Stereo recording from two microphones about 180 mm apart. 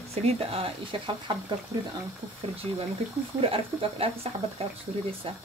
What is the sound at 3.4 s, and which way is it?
Speech, 30° right (ahead or behind).